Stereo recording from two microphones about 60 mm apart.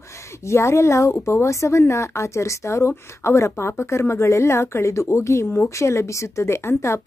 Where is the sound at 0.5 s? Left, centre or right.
Left.